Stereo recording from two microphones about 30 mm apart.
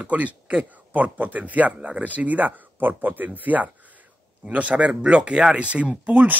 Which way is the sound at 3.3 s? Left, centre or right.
Right.